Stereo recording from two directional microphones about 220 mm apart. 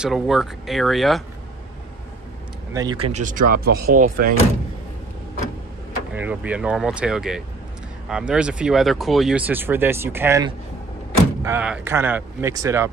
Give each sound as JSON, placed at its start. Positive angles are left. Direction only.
{"t": 0.0, "sound": "speech", "side_deg": 0}
{"t": 2.7, "sound": "speech", "side_deg": -15}
{"t": 3.1, "sound": "speech", "side_deg": -35}
{"t": 6.1, "sound": "speech", "side_deg": -5}